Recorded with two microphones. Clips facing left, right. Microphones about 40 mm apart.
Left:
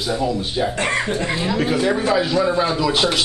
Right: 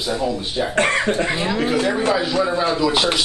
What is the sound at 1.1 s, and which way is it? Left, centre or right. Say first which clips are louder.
Speech: right 1 dB; right.